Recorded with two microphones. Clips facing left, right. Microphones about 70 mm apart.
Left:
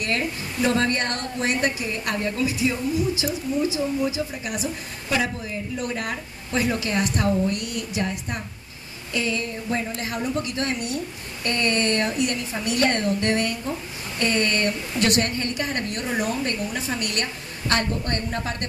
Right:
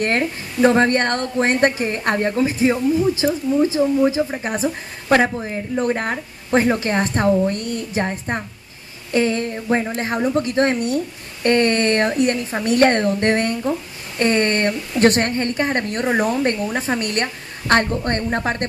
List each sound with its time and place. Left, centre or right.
0.0 s a woman's voice: right